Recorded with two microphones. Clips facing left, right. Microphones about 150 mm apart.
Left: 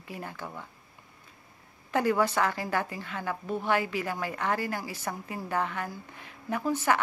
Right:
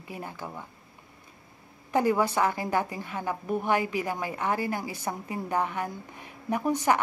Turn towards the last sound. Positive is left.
turn(degrees=-15)  # may be behind; listen again after turning